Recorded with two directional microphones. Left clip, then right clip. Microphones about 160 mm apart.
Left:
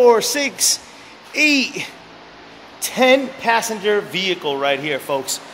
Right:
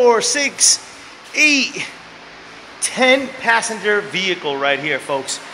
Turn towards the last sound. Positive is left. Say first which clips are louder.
# right 1 dB
turn(degrees=10)  # may be behind; listen again after turning